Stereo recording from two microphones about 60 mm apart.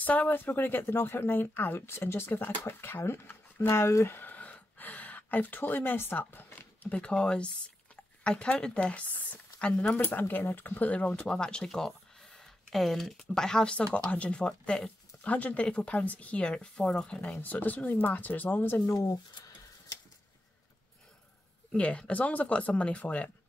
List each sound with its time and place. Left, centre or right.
0.0 s speech: left
6.8 s speech: centre
10.0 s speech: left
11.1 s speech: centre
17.4 s speech: left
18.9 s speech: left
21.7 s speech: centre